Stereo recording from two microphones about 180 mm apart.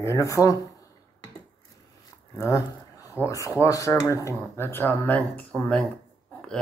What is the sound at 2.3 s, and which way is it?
Speech, 15° left (ahead or behind).